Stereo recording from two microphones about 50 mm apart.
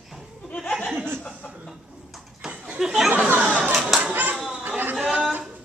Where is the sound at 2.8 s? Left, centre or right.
Centre.